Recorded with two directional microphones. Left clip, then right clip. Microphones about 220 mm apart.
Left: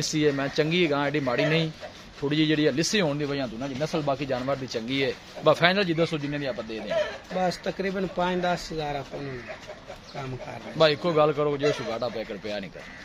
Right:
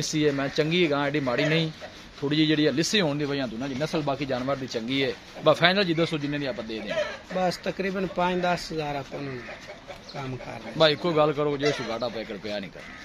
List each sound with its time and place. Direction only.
0.0 s speech: centre (ahead or behind)
7.3 s speech: 25° right (ahead or behind)
10.8 s speech: centre (ahead or behind)